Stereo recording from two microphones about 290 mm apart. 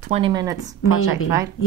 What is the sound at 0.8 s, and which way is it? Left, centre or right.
Speech, left.